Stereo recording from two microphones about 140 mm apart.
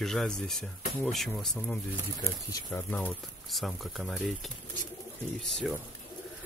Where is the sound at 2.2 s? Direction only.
20° left (ahead or behind).